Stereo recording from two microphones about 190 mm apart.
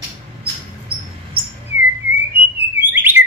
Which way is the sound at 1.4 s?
30° right (ahead or behind).